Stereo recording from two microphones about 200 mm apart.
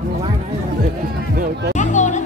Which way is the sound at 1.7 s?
35° left (ahead or behind).